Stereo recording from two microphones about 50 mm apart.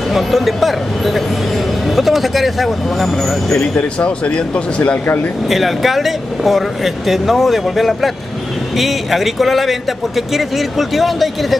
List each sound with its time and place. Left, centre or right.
0.1 s speech: centre
3.7 s speech: left
5.0 s speech: left
5.5 s speech: centre